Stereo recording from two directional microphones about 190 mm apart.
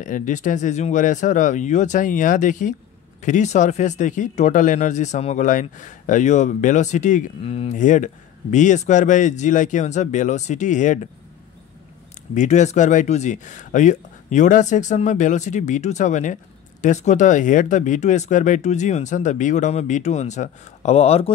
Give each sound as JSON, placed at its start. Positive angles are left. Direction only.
{"t": 0.0, "sound": "speech", "side_deg": 45}
{"t": 12.4, "sound": "speech", "side_deg": 40}